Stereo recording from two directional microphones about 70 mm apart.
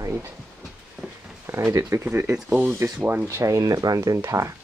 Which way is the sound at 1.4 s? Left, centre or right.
Right.